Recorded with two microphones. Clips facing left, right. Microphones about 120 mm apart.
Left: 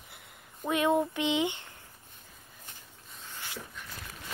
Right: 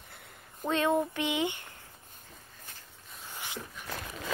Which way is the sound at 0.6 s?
15° left (ahead or behind).